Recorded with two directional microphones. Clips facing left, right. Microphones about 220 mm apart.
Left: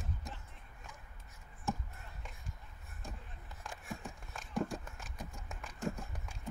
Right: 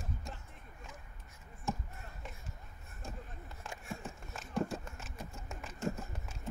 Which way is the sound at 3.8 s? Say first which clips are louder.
Right 1 dB; centre (ahead or behind).